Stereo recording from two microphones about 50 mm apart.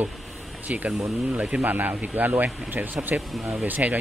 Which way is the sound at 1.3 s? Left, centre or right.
Right.